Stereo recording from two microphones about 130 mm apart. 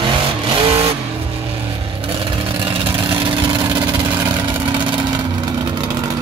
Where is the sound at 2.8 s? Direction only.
40° right (ahead or behind).